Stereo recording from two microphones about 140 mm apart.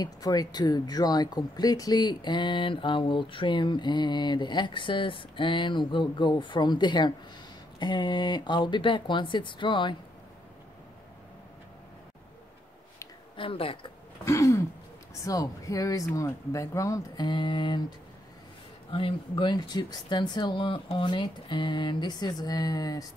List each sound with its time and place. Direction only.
0.0 s speech: 30° left (ahead or behind)
13.4 s speech: 40° left (ahead or behind)
14.2 s throat clearing: 20° left (ahead or behind)
15.2 s speech: 25° left (ahead or behind)